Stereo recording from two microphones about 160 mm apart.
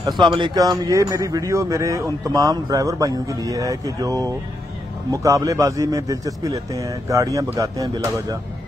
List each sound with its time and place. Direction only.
0.0 s a man's voice: 30° right (ahead or behind)